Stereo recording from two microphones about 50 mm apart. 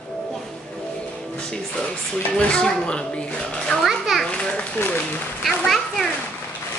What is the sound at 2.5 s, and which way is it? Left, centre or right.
Speech, centre.